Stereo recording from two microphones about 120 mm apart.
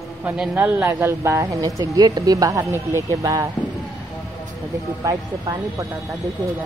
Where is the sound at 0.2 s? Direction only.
15° right (ahead or behind).